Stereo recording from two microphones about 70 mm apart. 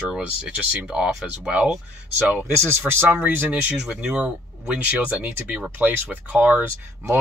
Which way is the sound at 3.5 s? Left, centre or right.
Centre.